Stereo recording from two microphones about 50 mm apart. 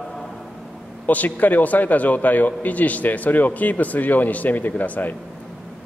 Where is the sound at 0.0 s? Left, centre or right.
Centre.